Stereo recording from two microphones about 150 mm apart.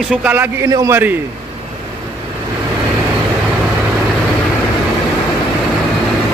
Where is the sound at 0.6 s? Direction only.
20° right (ahead or behind).